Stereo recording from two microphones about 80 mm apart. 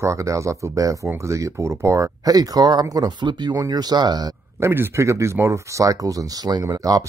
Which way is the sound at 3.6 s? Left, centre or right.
Right.